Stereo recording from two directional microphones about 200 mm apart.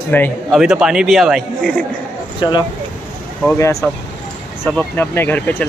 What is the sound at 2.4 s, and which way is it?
Speech, 20° left (ahead or behind).